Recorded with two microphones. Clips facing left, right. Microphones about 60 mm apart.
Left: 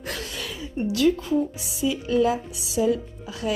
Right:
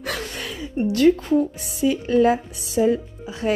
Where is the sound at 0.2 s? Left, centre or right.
Right.